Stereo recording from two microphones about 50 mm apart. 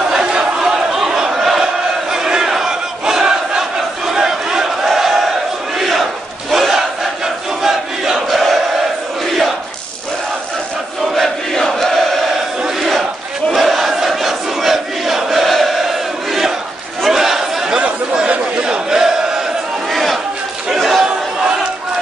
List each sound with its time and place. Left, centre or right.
0.1 s crowd: centre
2.1 s battle cry: centre
4.8 s battle cry: centre
5.8 s crowd: centre
6.5 s battle cry: centre
7.6 s crowd: centre
11.1 s crowd: centre
12.6 s crowd: centre
17.1 s a sound: centre
17.7 s a sound: right
19.9 s chatter: centre